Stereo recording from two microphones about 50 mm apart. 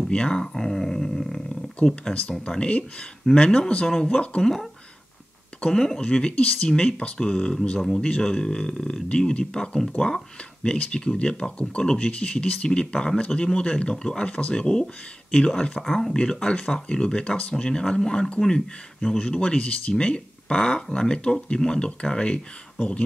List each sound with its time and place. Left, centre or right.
0.1 s a sound: centre
2.1 s speech: centre
2.5 s speech: left
5.7 s speech: centre
15.8 s speech: centre
16.2 s speech: centre